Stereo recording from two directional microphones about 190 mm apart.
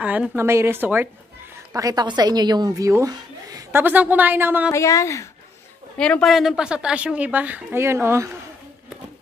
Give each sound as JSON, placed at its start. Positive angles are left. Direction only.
{"t": 0.0, "sound": "a woman's voice", "side_deg": -5}
{"t": 4.6, "sound": "speech", "side_deg": 15}
{"t": 5.9, "sound": "a woman's voice", "side_deg": 5}